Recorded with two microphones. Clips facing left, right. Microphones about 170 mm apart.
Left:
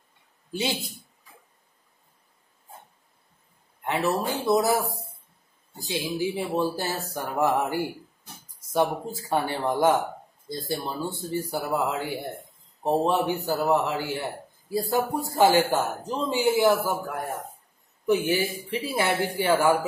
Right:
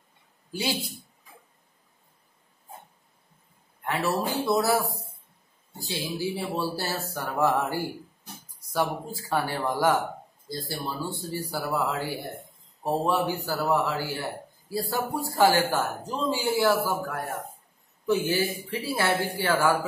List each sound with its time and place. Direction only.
0.5 s speech: 20° left (ahead or behind)
3.8 s speech: 20° left (ahead or behind)